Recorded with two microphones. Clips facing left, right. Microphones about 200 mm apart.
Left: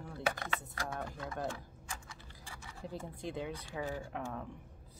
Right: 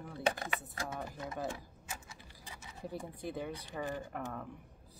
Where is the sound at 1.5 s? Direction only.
20° right (ahead or behind).